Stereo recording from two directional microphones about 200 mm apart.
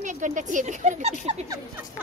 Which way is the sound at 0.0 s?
40° right (ahead or behind).